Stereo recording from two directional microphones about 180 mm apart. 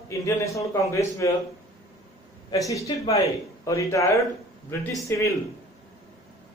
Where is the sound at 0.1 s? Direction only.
15° left (ahead or behind).